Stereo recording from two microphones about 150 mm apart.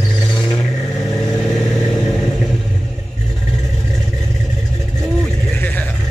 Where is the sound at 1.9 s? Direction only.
5° left (ahead or behind).